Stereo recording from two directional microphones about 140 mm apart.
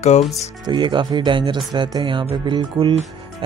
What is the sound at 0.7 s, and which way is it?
Speech, 35° right (ahead or behind).